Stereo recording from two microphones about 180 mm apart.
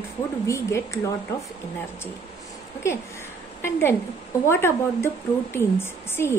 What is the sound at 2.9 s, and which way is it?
Speech, 15° left (ahead or behind).